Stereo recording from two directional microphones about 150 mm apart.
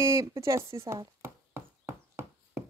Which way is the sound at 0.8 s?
15° right (ahead or behind).